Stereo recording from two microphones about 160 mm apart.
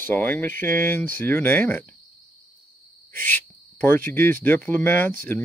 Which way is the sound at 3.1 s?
10° left (ahead or behind).